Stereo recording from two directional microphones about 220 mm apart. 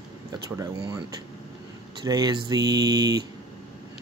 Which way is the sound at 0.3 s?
20° right (ahead or behind).